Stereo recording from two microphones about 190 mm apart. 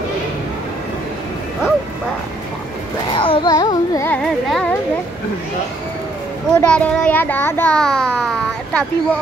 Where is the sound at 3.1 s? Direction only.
25° left (ahead or behind).